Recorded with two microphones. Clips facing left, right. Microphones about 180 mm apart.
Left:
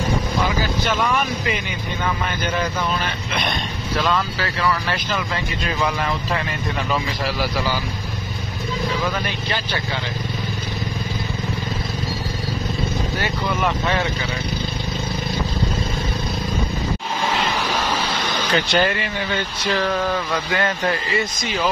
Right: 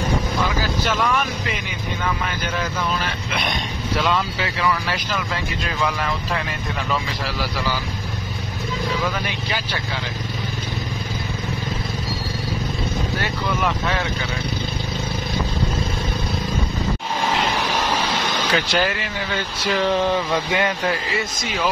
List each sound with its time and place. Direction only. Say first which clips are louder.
4.1 s speech: even; 10° right (ahead or behind)
13.6 s speech: left 2 dB; centre (ahead or behind)
18.5 s speech: left 3 dB; 5° right (ahead or behind)
19.7 s a sound: right 2 dB; 20° right (ahead or behind)